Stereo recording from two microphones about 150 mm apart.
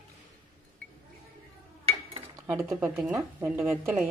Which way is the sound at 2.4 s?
Centre (ahead or behind).